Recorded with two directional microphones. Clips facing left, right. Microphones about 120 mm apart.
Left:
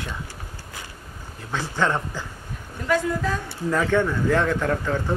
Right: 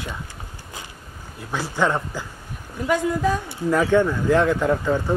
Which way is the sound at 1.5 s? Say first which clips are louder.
Right 2 dB; 10° right (ahead or behind).